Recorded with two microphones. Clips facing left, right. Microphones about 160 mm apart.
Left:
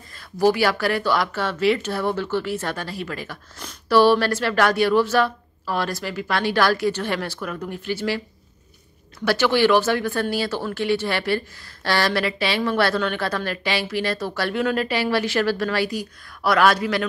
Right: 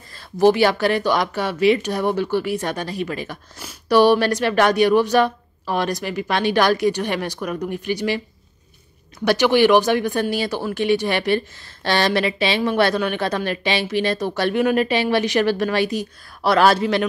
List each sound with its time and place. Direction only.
0.4 s speech: 20° right (ahead or behind)
9.2 s speech: 15° right (ahead or behind)